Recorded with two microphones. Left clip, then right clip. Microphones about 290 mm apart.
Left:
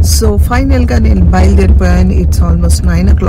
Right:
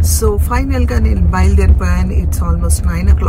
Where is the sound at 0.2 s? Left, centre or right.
Centre.